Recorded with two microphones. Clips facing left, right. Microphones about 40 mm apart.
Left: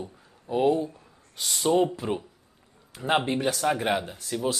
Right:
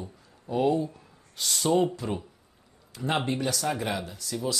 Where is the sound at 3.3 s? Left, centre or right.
Left.